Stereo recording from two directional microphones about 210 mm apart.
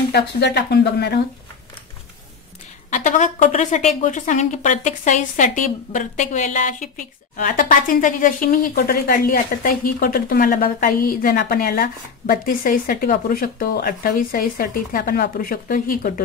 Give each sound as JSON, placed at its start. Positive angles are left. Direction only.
{"t": 0.1, "sound": "speech", "side_deg": 50}
{"t": 2.9, "sound": "speech", "side_deg": 35}